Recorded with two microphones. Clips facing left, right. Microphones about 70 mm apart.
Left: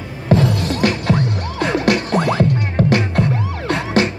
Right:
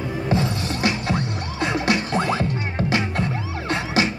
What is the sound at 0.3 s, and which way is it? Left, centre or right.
Music, left.